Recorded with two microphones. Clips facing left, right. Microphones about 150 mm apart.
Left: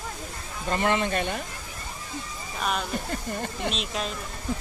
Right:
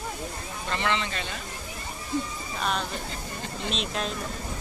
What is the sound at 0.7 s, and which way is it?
Speech, 50° left (ahead or behind).